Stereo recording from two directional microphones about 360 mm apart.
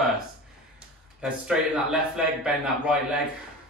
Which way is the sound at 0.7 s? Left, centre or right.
Centre.